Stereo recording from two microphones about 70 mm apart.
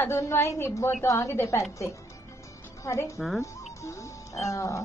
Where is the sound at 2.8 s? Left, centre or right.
Left.